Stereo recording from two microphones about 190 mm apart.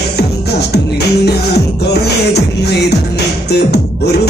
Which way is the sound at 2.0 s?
60° left (ahead or behind).